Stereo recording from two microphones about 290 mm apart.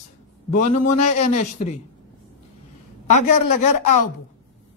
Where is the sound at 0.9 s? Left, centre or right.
Left.